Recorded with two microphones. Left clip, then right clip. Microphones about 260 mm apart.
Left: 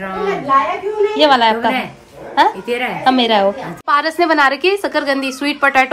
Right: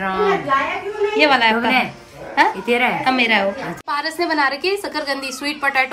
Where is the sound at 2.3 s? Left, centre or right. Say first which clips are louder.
Left 2 dB; centre.